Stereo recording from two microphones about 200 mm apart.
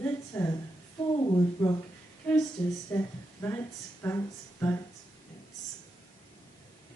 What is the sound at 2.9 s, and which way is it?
Speech, 10° left (ahead or behind).